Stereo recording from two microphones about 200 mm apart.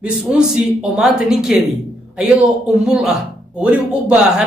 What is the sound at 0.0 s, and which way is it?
Speech, 5° right (ahead or behind).